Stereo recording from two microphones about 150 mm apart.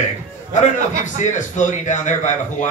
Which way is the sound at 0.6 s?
55° left (ahead or behind).